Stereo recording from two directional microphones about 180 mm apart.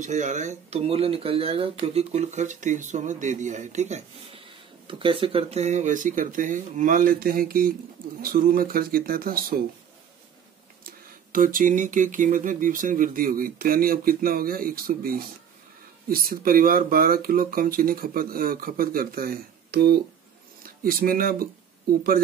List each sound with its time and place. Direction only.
0.0 s speech: 40° right (ahead or behind)
11.3 s speech: 50° right (ahead or behind)